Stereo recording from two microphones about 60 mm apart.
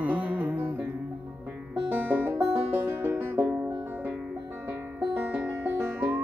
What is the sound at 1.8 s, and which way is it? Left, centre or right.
Music, right.